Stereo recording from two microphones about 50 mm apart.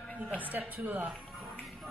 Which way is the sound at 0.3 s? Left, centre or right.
Right.